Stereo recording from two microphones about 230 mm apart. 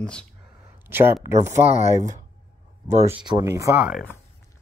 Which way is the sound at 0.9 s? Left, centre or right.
Centre.